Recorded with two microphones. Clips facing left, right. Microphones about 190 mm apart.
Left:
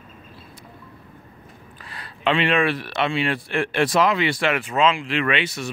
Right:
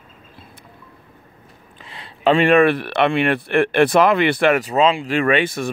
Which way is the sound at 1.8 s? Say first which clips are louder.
Right 2 dB; 25° right (ahead or behind).